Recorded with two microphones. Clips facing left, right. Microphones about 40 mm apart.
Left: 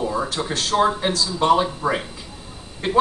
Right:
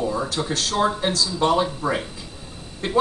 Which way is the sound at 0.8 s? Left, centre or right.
Centre.